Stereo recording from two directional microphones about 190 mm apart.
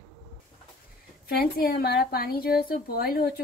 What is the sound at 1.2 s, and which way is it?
A woman's voice, 55° left (ahead or behind).